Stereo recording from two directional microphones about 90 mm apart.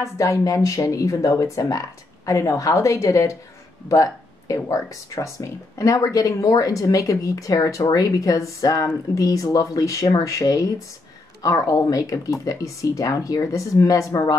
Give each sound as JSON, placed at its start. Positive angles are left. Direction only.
{"t": 0.0, "sound": "speech", "side_deg": 35}